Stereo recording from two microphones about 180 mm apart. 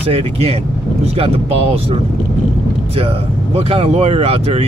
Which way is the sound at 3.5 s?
35° right (ahead or behind).